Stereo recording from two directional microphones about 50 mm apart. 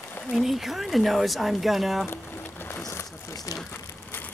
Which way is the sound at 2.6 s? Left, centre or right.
Left.